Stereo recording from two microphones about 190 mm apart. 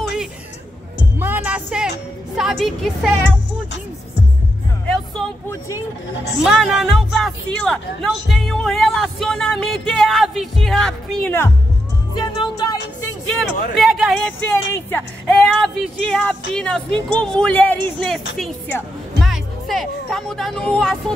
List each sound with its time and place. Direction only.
1.2 s music: 10° right (ahead or behind)
2.3 s a woman's voice: centre (ahead or behind)
4.8 s music: 5° left (ahead or behind)
6.4 s a woman's voice: centre (ahead or behind)
12.2 s speech: 25° left (ahead or behind)
13.3 s a woman's voice: centre (ahead or behind)
14.5 s a woman's voice: 10° left (ahead or behind)